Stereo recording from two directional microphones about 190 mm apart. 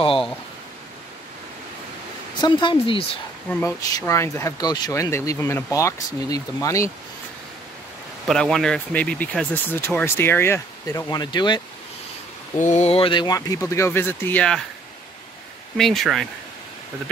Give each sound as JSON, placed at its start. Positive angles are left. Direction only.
{"t": 2.4, "sound": "speech", "side_deg": 25}
{"t": 3.4, "sound": "speech", "side_deg": 10}
{"t": 8.3, "sound": "speech", "side_deg": 0}
{"t": 12.5, "sound": "speech", "side_deg": 40}
{"t": 15.8, "sound": "speech", "side_deg": 0}